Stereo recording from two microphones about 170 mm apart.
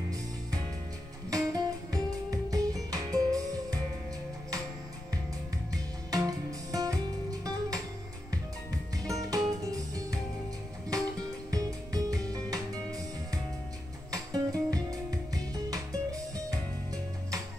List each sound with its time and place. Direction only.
1.3 s music: 20° right (ahead or behind)
5.7 s music: 20° right (ahead or behind)
8.9 s music: 20° right (ahead or behind)